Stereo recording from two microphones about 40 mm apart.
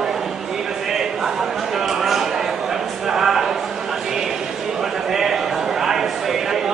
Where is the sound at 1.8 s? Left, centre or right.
Centre.